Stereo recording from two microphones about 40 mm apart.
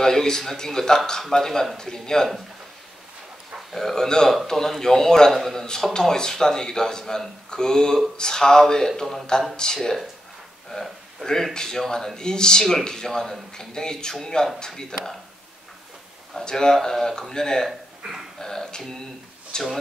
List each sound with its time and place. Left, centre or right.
0.0 s speech: centre
3.7 s speech: centre
16.4 s speech: centre